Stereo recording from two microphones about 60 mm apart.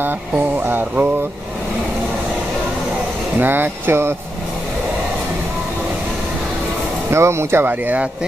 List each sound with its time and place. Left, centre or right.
0.7 s speech: right
3.3 s speech: right
7.1 s speech: right
7.6 s speech: right